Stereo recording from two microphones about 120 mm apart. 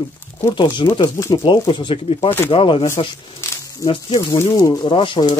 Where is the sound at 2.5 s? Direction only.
50° left (ahead or behind).